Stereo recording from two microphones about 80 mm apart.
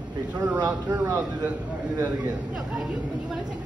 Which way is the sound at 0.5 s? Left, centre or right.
Right.